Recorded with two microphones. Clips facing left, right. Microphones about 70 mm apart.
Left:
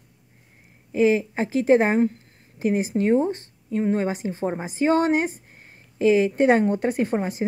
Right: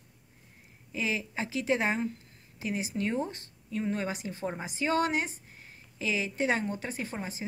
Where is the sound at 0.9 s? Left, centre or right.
Left.